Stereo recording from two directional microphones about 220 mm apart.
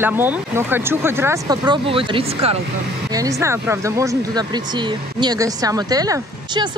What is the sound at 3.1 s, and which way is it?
Speech, 15° right (ahead or behind).